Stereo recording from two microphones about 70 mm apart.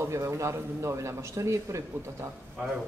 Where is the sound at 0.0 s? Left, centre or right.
Right.